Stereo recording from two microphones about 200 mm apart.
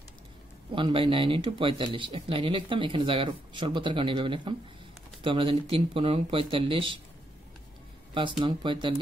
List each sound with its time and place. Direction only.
0.7 s speech: 25° right (ahead or behind)
8.1 s speech: 25° right (ahead or behind)